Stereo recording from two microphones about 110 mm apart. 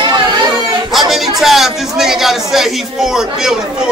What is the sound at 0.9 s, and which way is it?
A man's voice, centre (ahead or behind).